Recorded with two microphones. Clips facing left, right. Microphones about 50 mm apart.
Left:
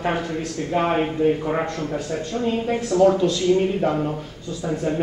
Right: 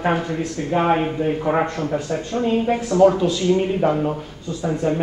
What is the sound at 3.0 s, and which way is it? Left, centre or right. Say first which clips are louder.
Speech: right 2 dB; centre.